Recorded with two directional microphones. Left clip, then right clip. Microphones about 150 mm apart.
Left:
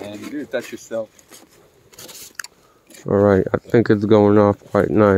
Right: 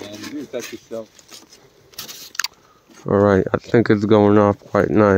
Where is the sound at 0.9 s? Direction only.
70° left (ahead or behind).